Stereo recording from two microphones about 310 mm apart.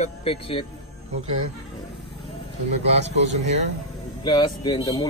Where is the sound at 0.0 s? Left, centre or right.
Centre.